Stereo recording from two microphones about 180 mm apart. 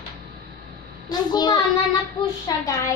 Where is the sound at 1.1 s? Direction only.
25° left (ahead or behind).